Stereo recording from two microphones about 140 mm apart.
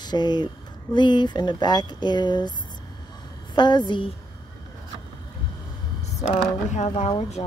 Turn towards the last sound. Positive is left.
turn(degrees=40)  # may be behind; listen again after turning